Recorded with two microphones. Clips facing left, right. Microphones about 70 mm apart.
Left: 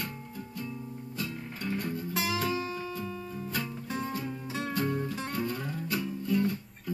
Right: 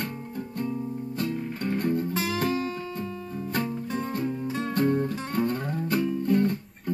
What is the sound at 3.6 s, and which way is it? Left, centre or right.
Music, right.